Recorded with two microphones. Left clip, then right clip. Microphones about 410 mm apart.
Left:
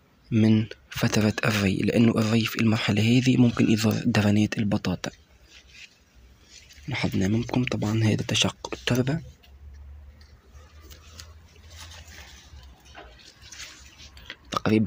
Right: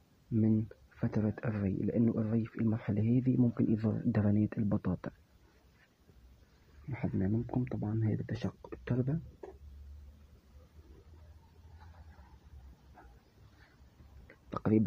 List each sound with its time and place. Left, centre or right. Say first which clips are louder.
0.3 s speech: left 9 dB; right
6.9 s speech: left 10 dB; right
14.2 s a sound: left 10 dB; right